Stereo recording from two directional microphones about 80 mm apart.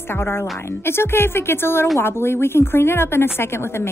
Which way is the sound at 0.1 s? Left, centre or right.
Left.